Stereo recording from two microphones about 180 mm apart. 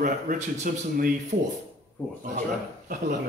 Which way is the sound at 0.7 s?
50° right (ahead or behind).